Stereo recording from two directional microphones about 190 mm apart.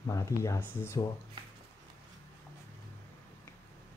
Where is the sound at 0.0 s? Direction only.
15° left (ahead or behind).